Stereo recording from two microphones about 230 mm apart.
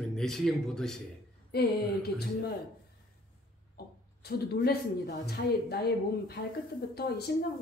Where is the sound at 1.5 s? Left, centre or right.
Left.